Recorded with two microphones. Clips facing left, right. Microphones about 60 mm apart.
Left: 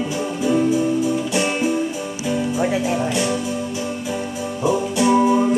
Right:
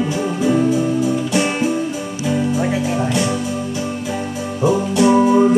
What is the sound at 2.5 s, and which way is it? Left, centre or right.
Music, centre.